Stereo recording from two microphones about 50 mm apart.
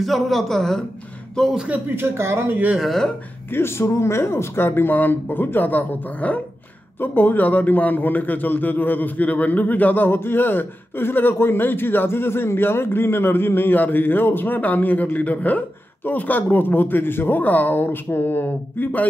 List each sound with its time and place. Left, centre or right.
0.0 s a man's voice: centre
2.0 s speech: right
3.5 s speech: left
4.6 s a man's voice: left